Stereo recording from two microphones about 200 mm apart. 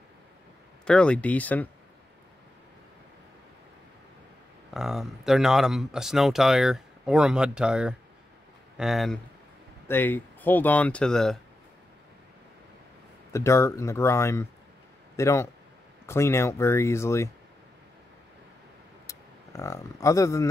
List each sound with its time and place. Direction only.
0.8 s speech: 5° left (ahead or behind)
4.7 s speech: centre (ahead or behind)
13.3 s speech: 15° left (ahead or behind)
19.0 s speech: 15° left (ahead or behind)